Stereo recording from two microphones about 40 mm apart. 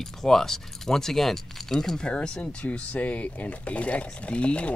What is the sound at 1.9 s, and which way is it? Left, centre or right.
Speech, left.